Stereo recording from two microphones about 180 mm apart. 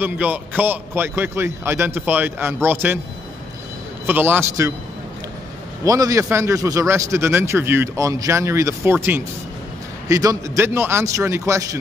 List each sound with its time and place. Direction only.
0.0 s a man's voice: 10° right (ahead or behind)
4.0 s a man's voice: 10° right (ahead or behind)
5.9 s a man's voice: 20° right (ahead or behind)